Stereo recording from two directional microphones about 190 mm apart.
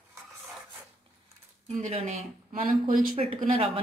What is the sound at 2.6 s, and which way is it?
Speech, 50° right (ahead or behind).